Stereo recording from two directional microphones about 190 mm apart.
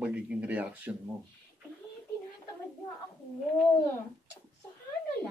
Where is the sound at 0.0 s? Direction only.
5° right (ahead or behind).